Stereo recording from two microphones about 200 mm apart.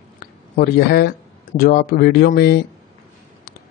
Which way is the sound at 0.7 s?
55° left (ahead or behind).